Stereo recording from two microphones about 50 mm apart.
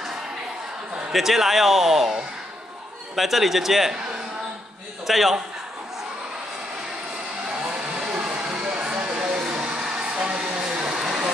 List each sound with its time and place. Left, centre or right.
0.9 s a man's voice: centre
3.2 s a man's voice: centre
5.0 s a man's voice: centre
7.6 s vehicle: right
9.7 s a sound: centre